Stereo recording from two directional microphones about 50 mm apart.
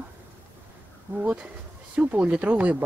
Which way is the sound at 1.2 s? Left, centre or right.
Right.